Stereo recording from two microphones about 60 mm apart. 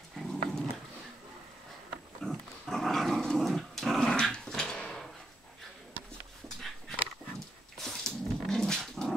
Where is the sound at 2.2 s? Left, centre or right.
Centre.